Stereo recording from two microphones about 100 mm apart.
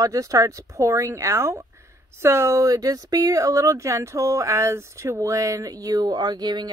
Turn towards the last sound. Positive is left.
turn(degrees=-45)  # may be behind; listen again after turning